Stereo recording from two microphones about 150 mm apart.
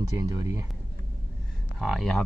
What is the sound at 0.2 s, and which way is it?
Speech, 20° right (ahead or behind).